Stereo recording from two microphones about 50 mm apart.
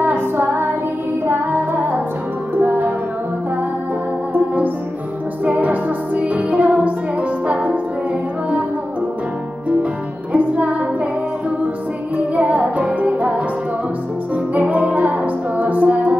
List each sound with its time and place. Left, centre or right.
0.0 s music: right
5.4 s music: right
10.3 s music: right
12.4 s music: right